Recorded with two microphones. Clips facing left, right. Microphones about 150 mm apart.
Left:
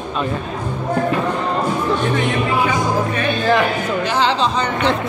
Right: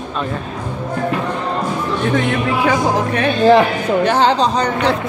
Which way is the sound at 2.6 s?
70° right (ahead or behind).